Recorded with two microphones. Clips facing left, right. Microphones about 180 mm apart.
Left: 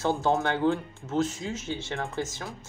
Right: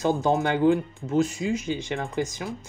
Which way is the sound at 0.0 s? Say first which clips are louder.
Right 3 dB; 15° right (ahead or behind).